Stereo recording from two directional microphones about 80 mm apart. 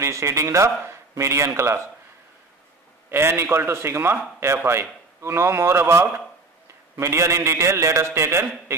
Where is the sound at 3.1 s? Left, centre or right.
Right.